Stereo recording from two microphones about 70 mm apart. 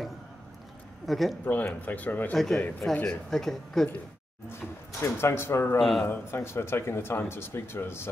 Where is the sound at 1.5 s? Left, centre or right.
Left.